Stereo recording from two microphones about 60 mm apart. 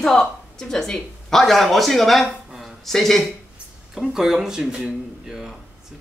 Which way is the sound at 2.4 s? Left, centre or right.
Centre.